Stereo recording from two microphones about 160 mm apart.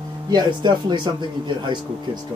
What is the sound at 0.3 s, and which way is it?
Speech, 30° right (ahead or behind).